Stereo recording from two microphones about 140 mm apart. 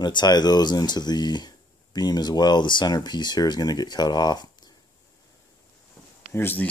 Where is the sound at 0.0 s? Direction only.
30° left (ahead or behind).